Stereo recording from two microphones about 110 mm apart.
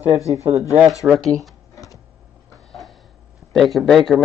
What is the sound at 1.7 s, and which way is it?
Printer, 30° left (ahead or behind).